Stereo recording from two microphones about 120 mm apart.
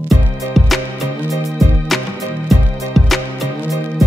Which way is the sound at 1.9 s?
Centre (ahead or behind).